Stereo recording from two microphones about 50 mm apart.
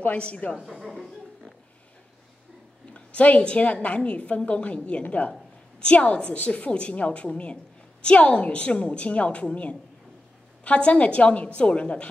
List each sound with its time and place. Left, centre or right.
0.0 s a woman's voice: left
0.6 s a woman's voice: centre
2.9 s a woman's voice: left